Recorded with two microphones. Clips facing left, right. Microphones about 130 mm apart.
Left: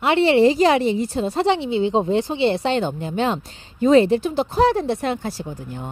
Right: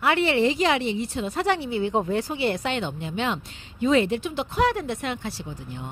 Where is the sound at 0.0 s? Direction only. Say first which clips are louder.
Left 6 dB; 25° left (ahead or behind); by 5.9 s 45° left (ahead or behind).